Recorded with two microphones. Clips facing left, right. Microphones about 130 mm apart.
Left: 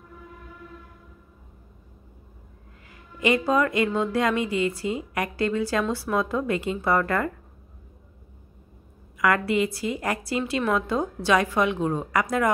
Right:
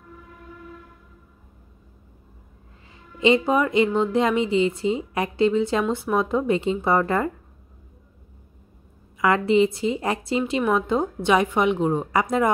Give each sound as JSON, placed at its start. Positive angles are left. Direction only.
{"t": 2.9, "sound": "speech", "side_deg": -25}
{"t": 9.2, "sound": "speech", "side_deg": -25}